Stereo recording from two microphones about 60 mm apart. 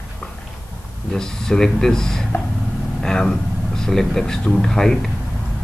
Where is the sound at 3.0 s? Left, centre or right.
Centre.